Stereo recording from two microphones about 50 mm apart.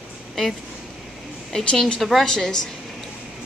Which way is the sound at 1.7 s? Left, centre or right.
Centre.